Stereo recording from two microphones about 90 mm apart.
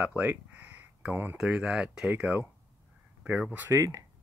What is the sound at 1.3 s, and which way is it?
Speech, 10° right (ahead or behind).